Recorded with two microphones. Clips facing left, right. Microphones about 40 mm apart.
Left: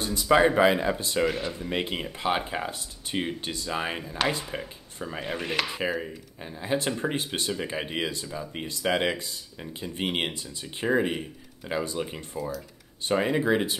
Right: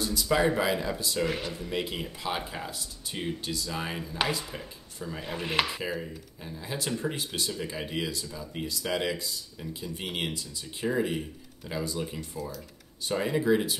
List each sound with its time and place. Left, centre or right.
0.0 s speech: left
12.4 s speech: centre
13.0 s speech: left